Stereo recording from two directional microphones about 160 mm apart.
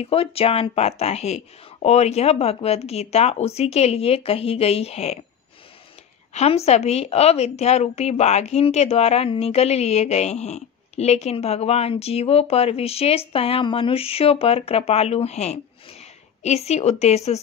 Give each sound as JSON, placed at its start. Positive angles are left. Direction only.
{"t": 0.0, "sound": "a woman's voice", "side_deg": 35}
{"t": 6.3, "sound": "a woman's voice", "side_deg": 40}